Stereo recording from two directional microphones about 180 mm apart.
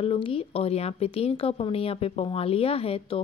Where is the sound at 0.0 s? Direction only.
30° left (ahead or behind).